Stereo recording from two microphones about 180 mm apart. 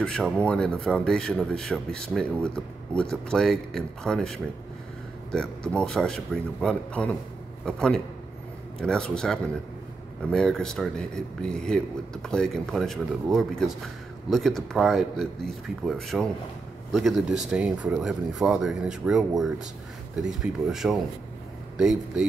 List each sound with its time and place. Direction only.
0.0 s speech: 5° left (ahead or behind)